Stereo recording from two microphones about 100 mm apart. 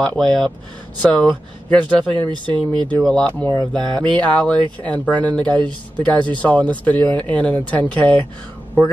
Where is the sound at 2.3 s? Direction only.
50° right (ahead or behind).